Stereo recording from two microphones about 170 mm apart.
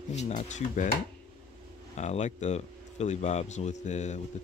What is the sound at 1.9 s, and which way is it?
Speech, 40° left (ahead or behind).